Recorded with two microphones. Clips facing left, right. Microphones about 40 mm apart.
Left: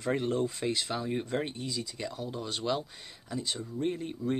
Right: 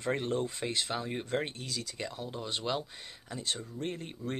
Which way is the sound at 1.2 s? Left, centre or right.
Right.